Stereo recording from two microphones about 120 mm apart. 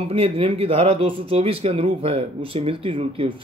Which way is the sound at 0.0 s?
50° right (ahead or behind).